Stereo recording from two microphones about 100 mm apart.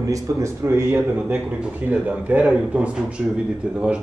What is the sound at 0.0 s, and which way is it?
A man's voice, 30° right (ahead or behind).